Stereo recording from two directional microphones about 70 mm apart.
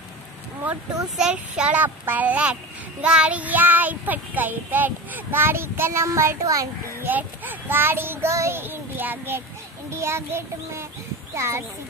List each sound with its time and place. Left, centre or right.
1.0 s child singing: centre; by 6.7 s right
7.0 s a child's voice: right